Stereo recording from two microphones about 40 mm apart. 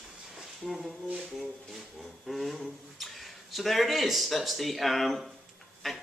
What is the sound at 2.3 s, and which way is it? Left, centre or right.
Speech, centre.